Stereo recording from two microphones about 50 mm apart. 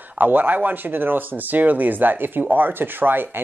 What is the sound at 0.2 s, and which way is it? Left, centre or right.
Speech, right.